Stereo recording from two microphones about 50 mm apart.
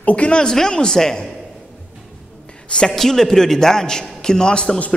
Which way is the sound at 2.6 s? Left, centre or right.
Centre.